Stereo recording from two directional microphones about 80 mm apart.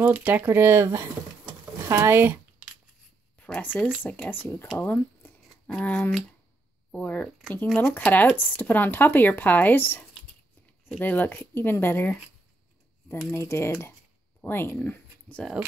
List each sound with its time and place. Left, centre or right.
0.0 s speech: right
3.6 s speech: left
13.3 s speech: left